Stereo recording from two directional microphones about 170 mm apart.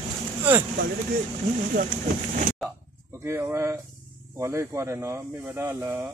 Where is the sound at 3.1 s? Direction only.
15° right (ahead or behind).